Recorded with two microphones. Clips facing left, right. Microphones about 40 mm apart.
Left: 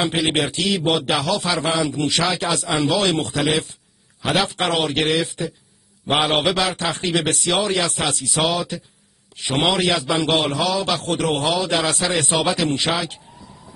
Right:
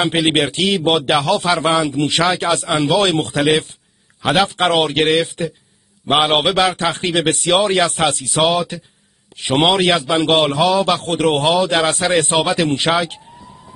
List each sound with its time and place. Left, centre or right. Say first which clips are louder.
0.0 s a man's voice: right 4 dB; right